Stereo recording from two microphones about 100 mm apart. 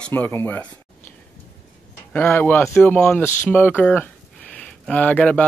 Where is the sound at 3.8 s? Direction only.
15° left (ahead or behind).